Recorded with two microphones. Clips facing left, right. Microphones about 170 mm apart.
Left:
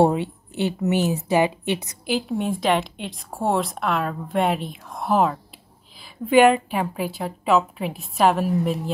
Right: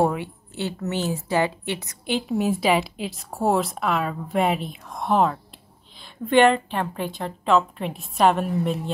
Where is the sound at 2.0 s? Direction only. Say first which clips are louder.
Right 2 dB; centre (ahead or behind).